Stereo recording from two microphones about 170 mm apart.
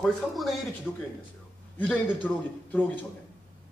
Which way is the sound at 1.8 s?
5° left (ahead or behind).